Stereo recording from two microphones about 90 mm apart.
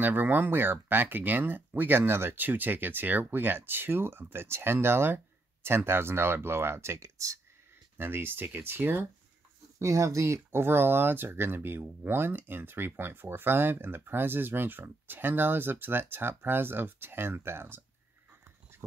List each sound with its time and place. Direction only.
0.0 s speech: 20° right (ahead or behind)
9.8 s speech: 35° right (ahead or behind)